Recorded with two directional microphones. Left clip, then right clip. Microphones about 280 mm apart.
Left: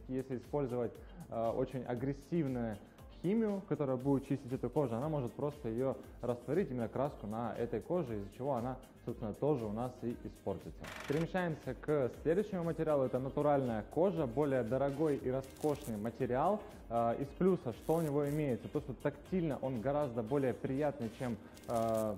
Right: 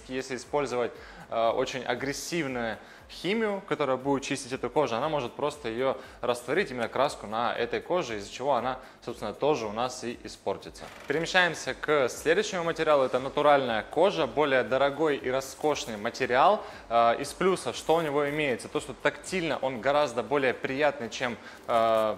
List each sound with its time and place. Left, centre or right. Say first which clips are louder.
0.1 s a man's voice: right 8 dB; centre
11.2 s a man's voice: right 14 dB; centre